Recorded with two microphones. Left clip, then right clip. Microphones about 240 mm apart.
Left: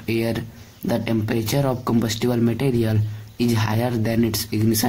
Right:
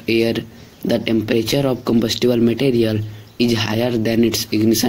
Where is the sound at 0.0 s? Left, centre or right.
Centre.